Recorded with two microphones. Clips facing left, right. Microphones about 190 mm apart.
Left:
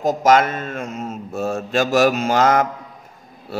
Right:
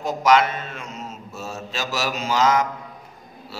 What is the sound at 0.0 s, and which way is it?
A man's voice, 45° left (ahead or behind).